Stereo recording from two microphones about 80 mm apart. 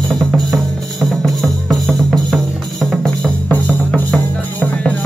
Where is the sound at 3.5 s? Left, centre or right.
Centre.